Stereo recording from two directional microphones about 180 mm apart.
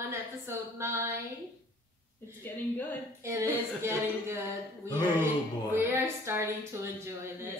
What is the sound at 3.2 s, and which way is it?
Speech, 15° right (ahead or behind).